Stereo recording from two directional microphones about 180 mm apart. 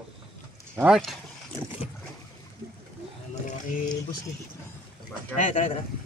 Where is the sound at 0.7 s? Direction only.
5° right (ahead or behind).